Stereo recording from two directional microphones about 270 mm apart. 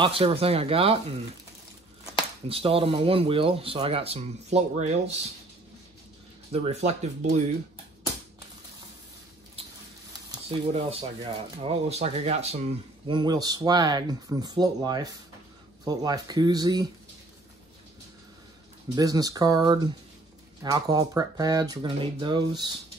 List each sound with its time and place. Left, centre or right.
0.0 s speech: right
2.4 s speech: right
6.5 s speech: right
10.3 s speech: centre
18.9 s speech: centre